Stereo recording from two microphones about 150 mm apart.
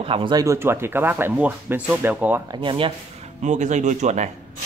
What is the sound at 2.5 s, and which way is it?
Speech, 35° right (ahead or behind).